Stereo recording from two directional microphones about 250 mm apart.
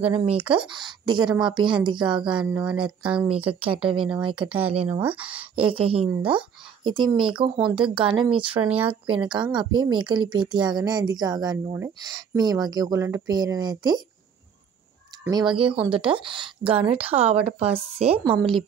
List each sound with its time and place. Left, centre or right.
0.1 s a woman's voice: right
2.3 s speech: centre
3.4 s a woman's voice: right
5.0 s speech: centre
5.6 s a woman's voice: right
8.5 s speech: centre
9.0 s a woman's voice: centre
15.5 s a woman's voice: right